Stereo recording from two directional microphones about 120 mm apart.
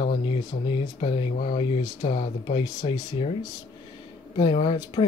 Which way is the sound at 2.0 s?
90° left.